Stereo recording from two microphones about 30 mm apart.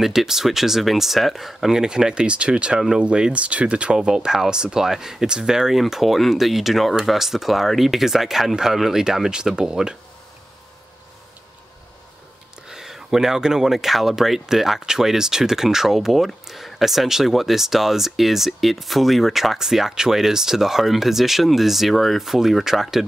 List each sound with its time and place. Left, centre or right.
0.0 s speech: centre
1.7 s speech: right
2.2 s speech: right
4.8 s speech: centre
5.8 s speech: centre
9.3 s speech: right
12.6 s speech: centre
19.6 s speech: centre